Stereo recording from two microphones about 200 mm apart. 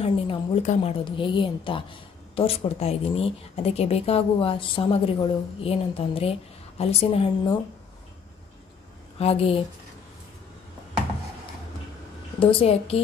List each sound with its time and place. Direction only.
0.0 s speech: 30° left (ahead or behind)
9.2 s speech: 30° left (ahead or behind)
12.4 s speech: 30° left (ahead or behind)